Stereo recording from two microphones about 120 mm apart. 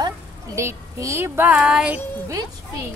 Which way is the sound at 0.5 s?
25° right (ahead or behind).